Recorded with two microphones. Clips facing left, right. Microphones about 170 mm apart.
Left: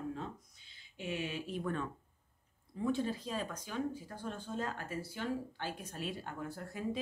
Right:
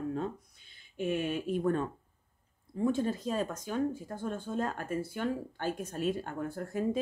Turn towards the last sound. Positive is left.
turn(degrees=-45)  # may be behind; listen again after turning